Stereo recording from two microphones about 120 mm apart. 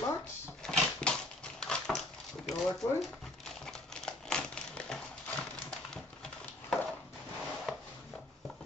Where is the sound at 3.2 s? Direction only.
5° left (ahead or behind).